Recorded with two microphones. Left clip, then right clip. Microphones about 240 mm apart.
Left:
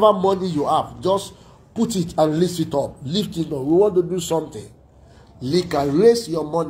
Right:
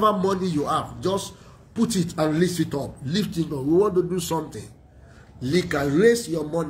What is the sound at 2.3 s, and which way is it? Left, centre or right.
Speech, centre.